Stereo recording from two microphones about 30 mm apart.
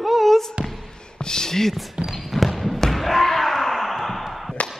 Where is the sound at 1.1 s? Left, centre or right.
Left.